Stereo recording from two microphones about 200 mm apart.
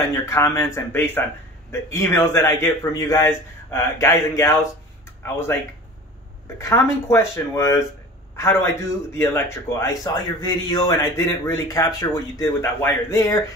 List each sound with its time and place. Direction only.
0.1 s a man's voice: 15° left (ahead or behind)
6.6 s a man's voice: 15° left (ahead or behind)